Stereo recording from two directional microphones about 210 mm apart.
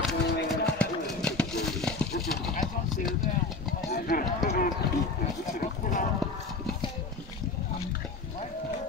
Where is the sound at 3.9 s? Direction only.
45° left (ahead or behind).